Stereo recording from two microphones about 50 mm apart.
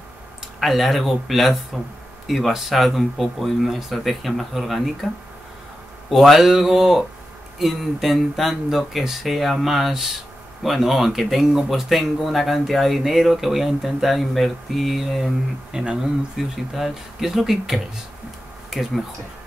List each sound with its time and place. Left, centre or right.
0.6 s speech: centre
6.0 s speech: centre
15.7 s speech: centre